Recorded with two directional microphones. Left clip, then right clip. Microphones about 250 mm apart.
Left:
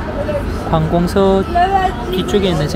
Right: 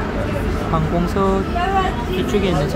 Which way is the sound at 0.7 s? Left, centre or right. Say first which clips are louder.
Left 7 dB; centre.